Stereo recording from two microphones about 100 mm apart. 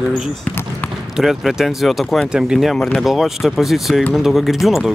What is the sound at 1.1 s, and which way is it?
Speech, 5° right (ahead or behind).